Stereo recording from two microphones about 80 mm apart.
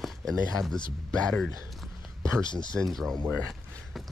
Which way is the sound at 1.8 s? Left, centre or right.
Centre.